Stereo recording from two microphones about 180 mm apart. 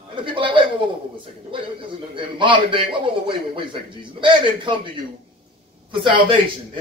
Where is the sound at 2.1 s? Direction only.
25° right (ahead or behind).